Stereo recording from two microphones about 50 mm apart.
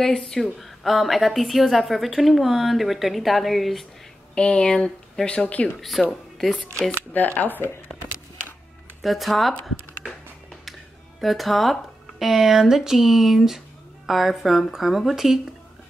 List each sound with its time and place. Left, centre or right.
0.0 s a woman's voice: centre
4.4 s speech: centre
5.8 s a woman's voice: centre
7.1 s speech: left
9.0 s a woman's voice: centre
10.0 s music: centre
11.1 s a woman's voice: centre